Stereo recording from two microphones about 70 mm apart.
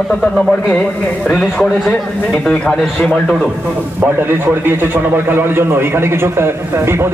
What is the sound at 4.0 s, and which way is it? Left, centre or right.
A man's voice, right.